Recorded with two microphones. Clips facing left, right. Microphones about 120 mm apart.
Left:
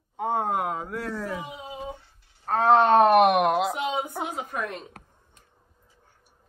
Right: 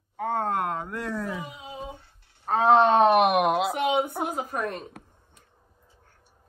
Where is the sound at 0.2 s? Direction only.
15° left (ahead or behind).